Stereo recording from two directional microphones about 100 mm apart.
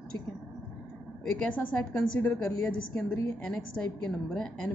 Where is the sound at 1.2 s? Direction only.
10° left (ahead or behind).